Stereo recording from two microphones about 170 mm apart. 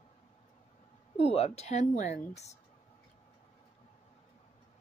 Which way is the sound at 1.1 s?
35° left (ahead or behind).